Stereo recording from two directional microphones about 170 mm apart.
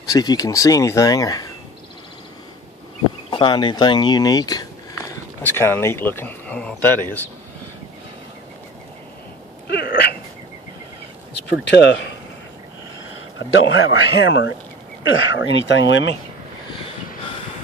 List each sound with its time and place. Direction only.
0.0 s speech: 20° left (ahead or behind)
3.3 s speech: 25° left (ahead or behind); by 7.0 s 10° left (ahead or behind)
9.7 s sneeze: 80° left
11.6 s speech: 80° left
13.5 s a man's voice: 90° left